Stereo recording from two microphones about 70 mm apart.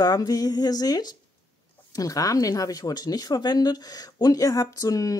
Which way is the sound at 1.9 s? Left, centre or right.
Left.